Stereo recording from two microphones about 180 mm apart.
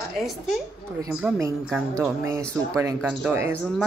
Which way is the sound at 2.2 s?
15° right (ahead or behind).